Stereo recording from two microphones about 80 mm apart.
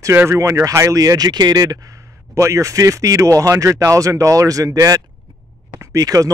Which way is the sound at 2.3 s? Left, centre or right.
Right.